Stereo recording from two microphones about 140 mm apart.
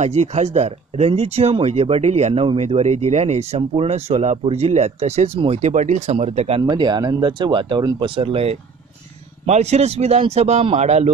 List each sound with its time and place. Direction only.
0.0 s speech: 50° right (ahead or behind)
6.6 s speech: 30° right (ahead or behind); by 11.1 s 50° right (ahead or behind)